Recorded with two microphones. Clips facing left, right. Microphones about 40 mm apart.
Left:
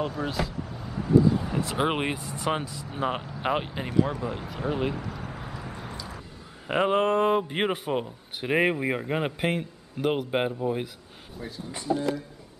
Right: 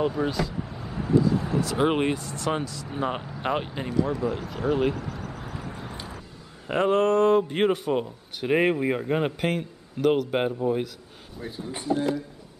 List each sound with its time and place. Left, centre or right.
0.0 s speech: centre
0.3 s speech: centre
0.6 s vehicle: centre
1.3 s a sound: centre
1.6 s speech: left
1.9 s a man's voice: centre
2.9 s speech: centre
3.9 s speech: left
4.2 s a man's voice: centre
4.9 s vehicle: left
5.7 s vehicle: centre
6.7 s a man's voice: centre
11.5 s speech: centre